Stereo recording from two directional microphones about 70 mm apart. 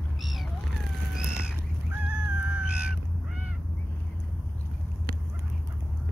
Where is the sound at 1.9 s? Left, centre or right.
Centre.